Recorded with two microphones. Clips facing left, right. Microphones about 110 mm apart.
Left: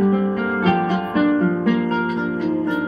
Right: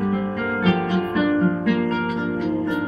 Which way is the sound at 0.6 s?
30° left (ahead or behind).